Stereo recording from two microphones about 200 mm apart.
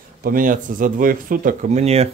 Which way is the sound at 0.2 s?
45° right (ahead or behind).